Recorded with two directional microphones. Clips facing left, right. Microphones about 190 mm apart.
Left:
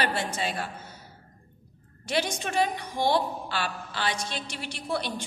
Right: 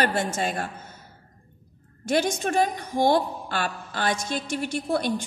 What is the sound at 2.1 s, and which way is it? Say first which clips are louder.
A woman's voice: right 5 dB; 45° right (ahead or behind).